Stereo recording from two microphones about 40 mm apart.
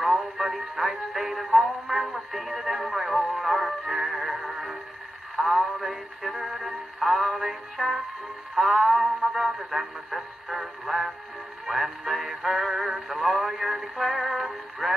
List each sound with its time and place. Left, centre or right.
0.0 s music: centre
5.3 s radio: centre
6.5 s music: centre
9.7 s a sound: centre
11.6 s synthetic singing: centre